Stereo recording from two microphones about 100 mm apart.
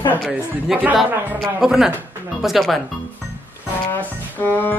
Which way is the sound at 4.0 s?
20° left (ahead or behind).